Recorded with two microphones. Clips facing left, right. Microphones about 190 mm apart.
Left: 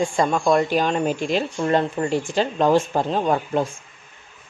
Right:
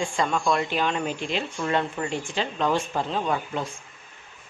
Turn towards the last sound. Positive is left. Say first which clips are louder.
# left 6 dB
turn(degrees=40)  # may be behind; listen again after turning